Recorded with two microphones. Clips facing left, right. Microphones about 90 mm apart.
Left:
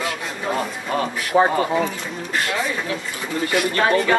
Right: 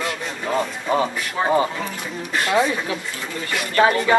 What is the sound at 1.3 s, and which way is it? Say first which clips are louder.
Speech: left 7 dB; 35° left (ahead or behind).